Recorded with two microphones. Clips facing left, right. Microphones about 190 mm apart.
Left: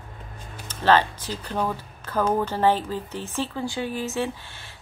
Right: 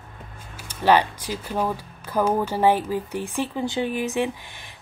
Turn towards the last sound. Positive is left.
turn(degrees=-15)  # may be behind; listen again after turning